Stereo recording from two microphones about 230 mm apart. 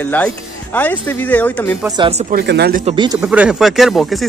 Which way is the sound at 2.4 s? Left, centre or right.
Right.